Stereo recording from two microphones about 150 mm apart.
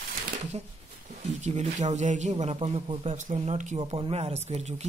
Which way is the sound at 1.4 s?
50° right (ahead or behind).